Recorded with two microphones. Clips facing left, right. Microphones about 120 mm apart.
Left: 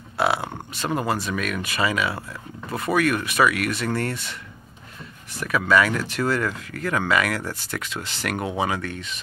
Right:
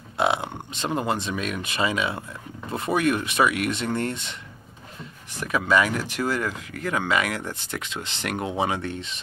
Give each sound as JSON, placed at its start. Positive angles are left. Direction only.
{"t": 0.2, "sound": "speech", "side_deg": -20}